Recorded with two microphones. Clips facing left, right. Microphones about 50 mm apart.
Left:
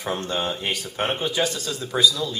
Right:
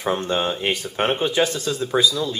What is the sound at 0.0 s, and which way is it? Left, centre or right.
Speech, centre.